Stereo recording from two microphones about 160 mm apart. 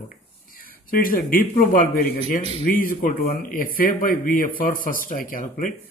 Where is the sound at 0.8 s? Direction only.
65° left (ahead or behind).